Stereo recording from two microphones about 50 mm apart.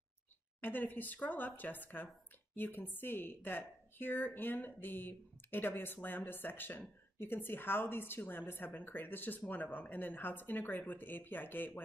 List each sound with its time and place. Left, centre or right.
0.6 s speech: left